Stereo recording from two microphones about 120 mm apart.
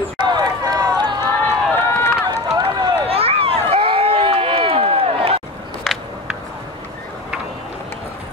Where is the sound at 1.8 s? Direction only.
20° left (ahead or behind).